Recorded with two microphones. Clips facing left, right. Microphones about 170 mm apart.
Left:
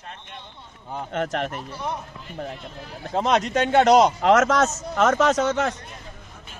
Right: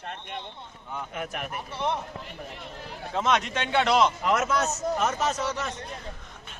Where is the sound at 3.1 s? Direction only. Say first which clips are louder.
Left 5 dB; 35° left (ahead or behind).